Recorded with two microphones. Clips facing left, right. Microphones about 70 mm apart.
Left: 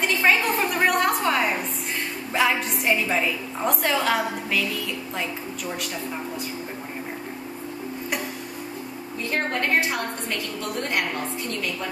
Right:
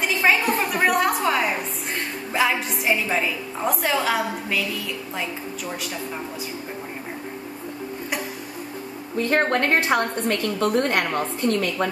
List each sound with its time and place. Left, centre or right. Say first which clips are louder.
0.0 s a woman's voice: right 1 dB; centre
9.2 s a woman's voice: right 5 dB; right